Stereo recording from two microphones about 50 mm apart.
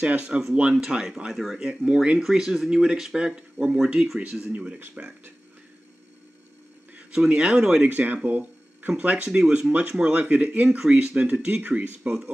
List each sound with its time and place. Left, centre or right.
0.0 s speech: right
0.6 s speech: centre
3.2 s speech: right
3.8 s speech: centre
4.4 s speech: right
4.9 s speech: right
7.2 s speech: right
7.9 s speech: right